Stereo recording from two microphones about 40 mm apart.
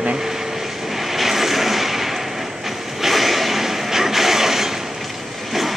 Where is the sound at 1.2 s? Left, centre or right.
Centre.